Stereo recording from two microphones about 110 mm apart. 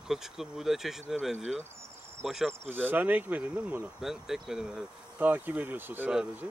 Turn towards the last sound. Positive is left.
turn(degrees=-20)  # may be behind; listen again after turning